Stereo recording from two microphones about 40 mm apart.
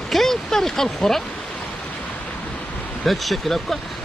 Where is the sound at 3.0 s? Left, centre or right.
Centre.